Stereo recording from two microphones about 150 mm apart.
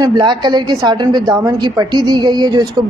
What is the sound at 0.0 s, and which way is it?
A woman's voice, 25° right (ahead or behind).